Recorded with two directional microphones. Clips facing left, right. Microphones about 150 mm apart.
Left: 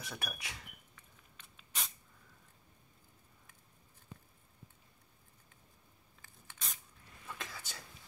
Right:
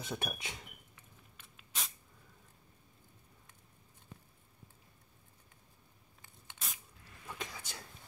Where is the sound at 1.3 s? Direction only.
Centre (ahead or behind).